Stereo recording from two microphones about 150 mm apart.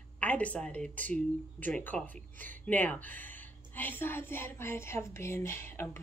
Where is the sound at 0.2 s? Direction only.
10° left (ahead or behind).